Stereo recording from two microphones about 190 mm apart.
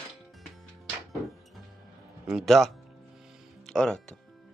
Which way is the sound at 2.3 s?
Centre (ahead or behind).